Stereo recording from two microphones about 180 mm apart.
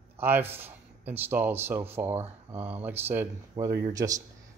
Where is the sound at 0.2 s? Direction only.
10° right (ahead or behind).